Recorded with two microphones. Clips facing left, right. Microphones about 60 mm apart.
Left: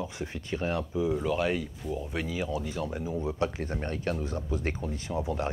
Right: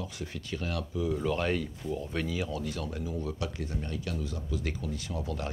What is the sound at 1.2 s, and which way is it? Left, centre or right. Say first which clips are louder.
Speech: left 1 dB; centre.